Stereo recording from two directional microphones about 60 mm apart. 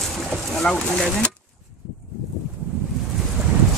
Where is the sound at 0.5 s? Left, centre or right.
Centre.